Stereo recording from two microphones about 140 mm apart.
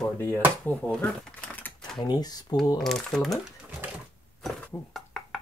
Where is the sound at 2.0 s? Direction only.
30° left (ahead or behind).